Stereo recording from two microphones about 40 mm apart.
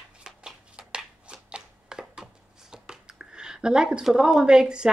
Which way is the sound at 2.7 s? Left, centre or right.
Centre.